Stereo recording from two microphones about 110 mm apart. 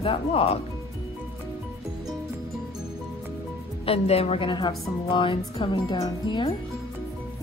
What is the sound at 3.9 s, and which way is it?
A woman's voice, 65° left (ahead or behind).